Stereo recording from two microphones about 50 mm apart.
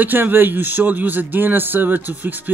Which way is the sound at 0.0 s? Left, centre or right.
Right.